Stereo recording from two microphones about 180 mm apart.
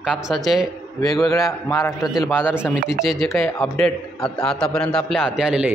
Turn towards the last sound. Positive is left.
turn(degrees=-5)  # may be behind; listen again after turning